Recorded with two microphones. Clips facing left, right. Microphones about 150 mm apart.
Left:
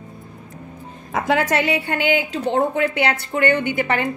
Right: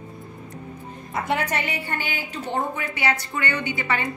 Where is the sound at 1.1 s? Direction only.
90° left.